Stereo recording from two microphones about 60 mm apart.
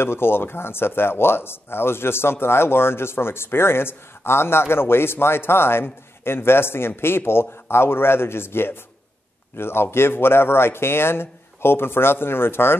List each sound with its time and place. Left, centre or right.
0.0 s speech: left